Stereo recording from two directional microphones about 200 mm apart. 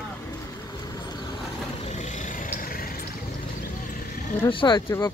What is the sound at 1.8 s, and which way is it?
Vehicle, 35° left (ahead or behind).